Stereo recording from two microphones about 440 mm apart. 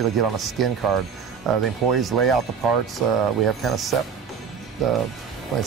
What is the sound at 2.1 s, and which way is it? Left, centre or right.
Speech, right.